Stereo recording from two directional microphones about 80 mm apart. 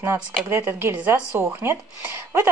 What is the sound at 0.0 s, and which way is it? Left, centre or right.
Speech, right.